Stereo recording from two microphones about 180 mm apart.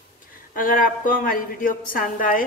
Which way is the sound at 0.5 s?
50° left (ahead or behind).